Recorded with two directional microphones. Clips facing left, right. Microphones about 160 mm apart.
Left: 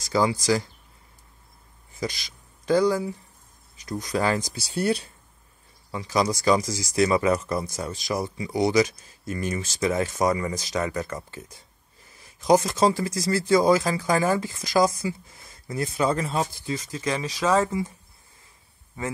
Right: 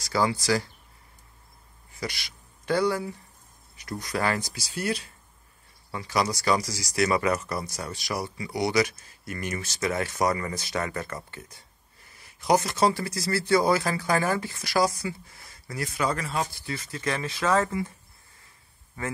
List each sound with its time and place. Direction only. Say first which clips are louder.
0.0 s speech: left 3 dB; 20° left (ahead or behind)
2.7 s speech: left 4 dB; 20° left (ahead or behind)
5.9 s speech: left 3 dB; 20° left (ahead or behind)